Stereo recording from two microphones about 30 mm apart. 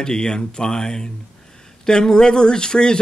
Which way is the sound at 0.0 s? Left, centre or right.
Left.